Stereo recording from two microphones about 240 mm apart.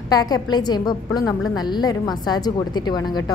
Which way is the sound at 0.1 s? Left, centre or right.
Centre.